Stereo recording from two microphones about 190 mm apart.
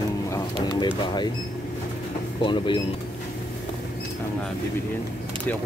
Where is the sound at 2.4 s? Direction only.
25° left (ahead or behind).